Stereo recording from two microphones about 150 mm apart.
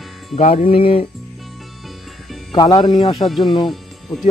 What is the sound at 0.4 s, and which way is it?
Speech, 50° left (ahead or behind).